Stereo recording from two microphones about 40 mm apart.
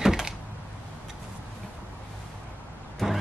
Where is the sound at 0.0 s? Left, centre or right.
Centre.